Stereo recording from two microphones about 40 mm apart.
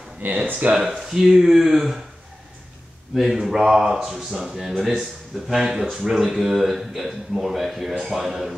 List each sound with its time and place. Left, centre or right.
0.2 s speech: right
0.8 s speech: centre
3.2 s speech: centre